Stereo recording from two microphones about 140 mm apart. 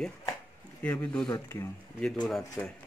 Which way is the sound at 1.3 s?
20° left (ahead or behind).